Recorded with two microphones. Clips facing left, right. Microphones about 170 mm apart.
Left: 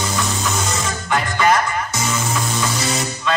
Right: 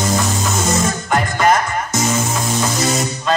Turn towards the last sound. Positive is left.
turn(degrees=-45)  # may be behind; listen again after turning